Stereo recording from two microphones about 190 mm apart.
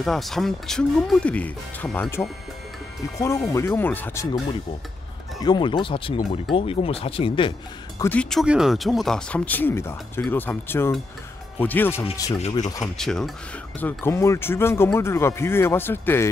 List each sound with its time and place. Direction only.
0.0 s speech: centre (ahead or behind)
5.4 s speech: 25° left (ahead or behind)
8.0 s speech: 5° left (ahead or behind)
12.8 s speech: centre (ahead or behind)